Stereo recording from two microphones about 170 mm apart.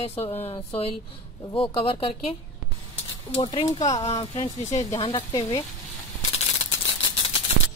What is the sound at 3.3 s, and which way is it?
Speech, 30° left (ahead or behind).